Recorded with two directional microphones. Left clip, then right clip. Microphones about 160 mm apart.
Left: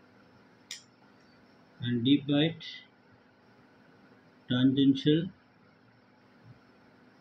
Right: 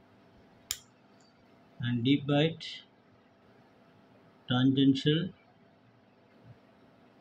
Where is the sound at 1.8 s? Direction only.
65° right (ahead or behind).